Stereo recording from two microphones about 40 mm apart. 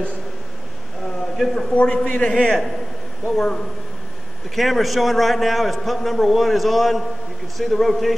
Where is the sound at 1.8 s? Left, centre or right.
Left.